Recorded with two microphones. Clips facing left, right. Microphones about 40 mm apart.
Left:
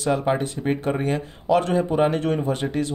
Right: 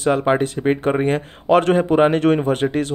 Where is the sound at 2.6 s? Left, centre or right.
Right.